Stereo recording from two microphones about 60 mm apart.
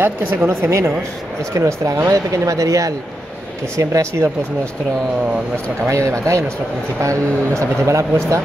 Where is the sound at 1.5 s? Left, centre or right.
Right.